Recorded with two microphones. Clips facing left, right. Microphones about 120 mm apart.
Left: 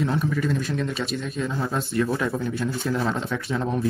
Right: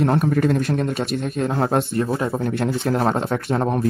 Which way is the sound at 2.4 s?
55° right (ahead or behind).